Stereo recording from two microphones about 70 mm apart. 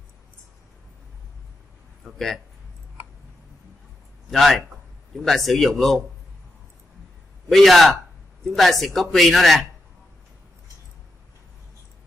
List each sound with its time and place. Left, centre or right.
2.0 s a man's voice: centre
4.3 s a man's voice: centre
7.5 s a man's voice: centre